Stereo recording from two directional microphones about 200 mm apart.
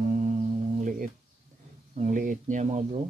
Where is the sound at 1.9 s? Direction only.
40° right (ahead or behind).